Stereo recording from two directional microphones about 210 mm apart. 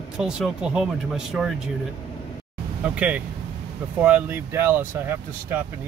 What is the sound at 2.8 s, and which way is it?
Speech, 5° right (ahead or behind).